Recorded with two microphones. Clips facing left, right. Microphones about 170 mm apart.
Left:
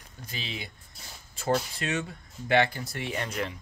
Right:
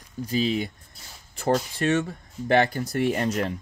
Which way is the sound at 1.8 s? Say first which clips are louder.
Right 8 dB; 45° right (ahead or behind).